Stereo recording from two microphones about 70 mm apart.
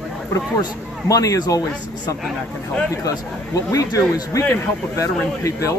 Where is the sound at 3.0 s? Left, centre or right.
Left.